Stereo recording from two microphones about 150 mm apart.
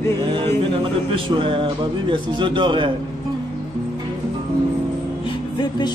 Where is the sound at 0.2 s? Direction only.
30° right (ahead or behind).